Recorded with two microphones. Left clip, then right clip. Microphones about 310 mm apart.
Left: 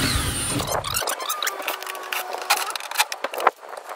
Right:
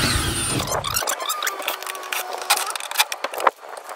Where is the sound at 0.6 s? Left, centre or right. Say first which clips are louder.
Left 1 dB; centre.